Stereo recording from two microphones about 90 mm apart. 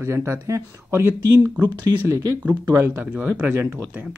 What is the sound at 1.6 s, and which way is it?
Speech, 45° right (ahead or behind).